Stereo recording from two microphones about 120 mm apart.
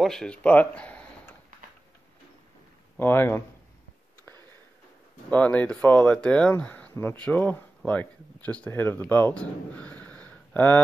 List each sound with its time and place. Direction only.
0.0 s speech: 5° left (ahead or behind)
3.0 s speech: 15° left (ahead or behind)
5.3 s speech: 10° left (ahead or behind)